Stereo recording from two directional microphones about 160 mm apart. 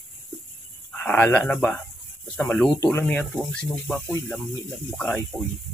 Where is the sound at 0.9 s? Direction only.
10° left (ahead or behind).